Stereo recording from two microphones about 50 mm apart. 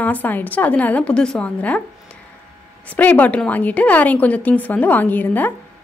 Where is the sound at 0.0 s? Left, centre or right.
Left; by 1.5 s centre.